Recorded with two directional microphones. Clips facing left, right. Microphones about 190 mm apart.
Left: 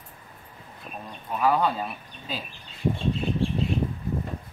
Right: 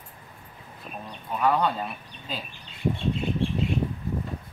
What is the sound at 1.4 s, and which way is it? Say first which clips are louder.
Speech: left 1 dB; centre (ahead or behind).